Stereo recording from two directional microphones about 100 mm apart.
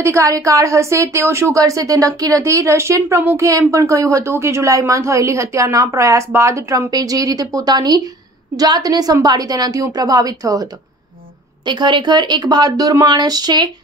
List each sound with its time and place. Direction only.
0.0 s a woman's voice: 30° right (ahead or behind)
6.9 s a woman's voice: 40° right (ahead or behind)
11.6 s speech: 50° right (ahead or behind)